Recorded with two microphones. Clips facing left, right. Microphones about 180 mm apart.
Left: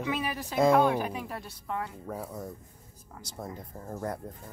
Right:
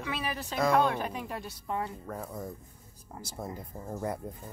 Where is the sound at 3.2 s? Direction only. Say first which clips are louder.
Even; 5° right (ahead or behind).